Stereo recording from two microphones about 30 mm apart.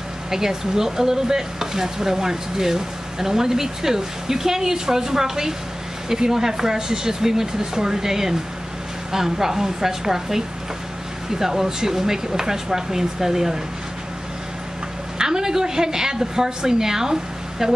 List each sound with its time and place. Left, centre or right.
0.3 s stir: centre
15.1 s a woman's voice: right